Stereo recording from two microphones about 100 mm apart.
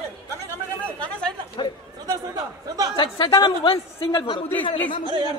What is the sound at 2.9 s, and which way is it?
Speech, 55° left (ahead or behind).